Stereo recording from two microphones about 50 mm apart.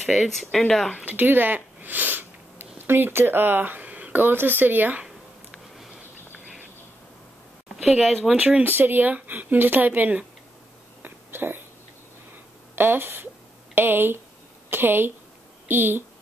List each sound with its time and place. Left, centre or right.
0.0 s speech: centre
0.3 s speech: centre
1.0 s sniff: right
2.9 s speech: right
3.8 s speech: right
5.0 s a sound: centre
8.0 s speech: centre
8.6 s speech: right
11.0 s a sound: right
12.7 s speech: right